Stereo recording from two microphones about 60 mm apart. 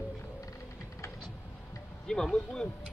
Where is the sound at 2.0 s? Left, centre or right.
Centre.